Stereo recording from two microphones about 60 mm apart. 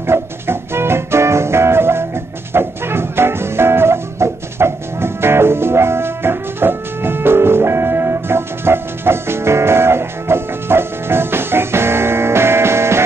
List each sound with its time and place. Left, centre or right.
0.0 s music: right